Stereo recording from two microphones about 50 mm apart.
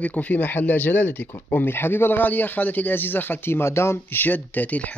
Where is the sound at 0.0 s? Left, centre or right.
Left.